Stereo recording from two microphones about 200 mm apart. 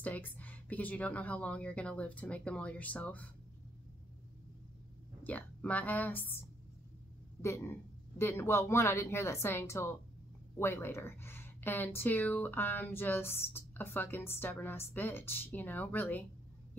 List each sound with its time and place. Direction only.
0.0 s speech: 10° left (ahead or behind)
5.2 s speech: 10° left (ahead or behind)
7.4 s speech: 15° left (ahead or behind)